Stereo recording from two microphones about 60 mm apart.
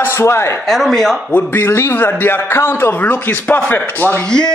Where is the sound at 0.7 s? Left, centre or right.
Centre.